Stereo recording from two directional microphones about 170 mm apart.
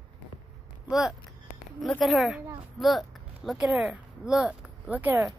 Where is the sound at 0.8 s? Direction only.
Centre (ahead or behind).